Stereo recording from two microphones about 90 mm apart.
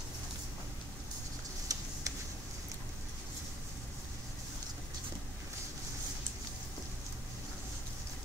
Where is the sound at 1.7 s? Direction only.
40° right (ahead or behind).